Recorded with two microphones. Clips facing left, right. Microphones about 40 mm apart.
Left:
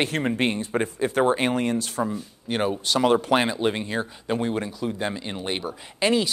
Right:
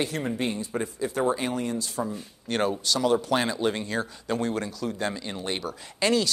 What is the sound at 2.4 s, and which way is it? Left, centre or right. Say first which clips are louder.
Speech: left 1 dB; centre.